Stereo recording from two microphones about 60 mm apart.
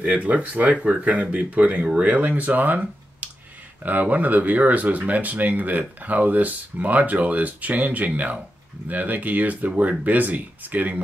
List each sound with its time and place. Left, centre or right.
0.0 s speech: right
3.8 s speech: right